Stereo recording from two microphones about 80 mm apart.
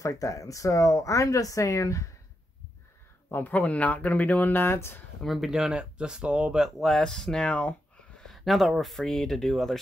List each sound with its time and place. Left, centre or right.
0.0 s speech: left
3.3 s speech: left
5.2 s speech: centre
8.2 s speech: centre